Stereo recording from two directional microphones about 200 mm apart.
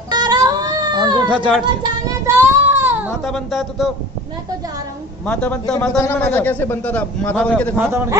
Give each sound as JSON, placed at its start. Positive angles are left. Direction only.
{"t": 0.1, "sound": "cat", "side_deg": -20}
{"t": 1.3, "sound": "speech", "side_deg": -5}
{"t": 1.8, "sound": "child singing", "side_deg": -15}
{"t": 3.3, "sound": "speech", "side_deg": 0}
{"t": 5.2, "sound": "a man's voice", "side_deg": 5}
{"t": 7.8, "sound": "a man's voice", "side_deg": -10}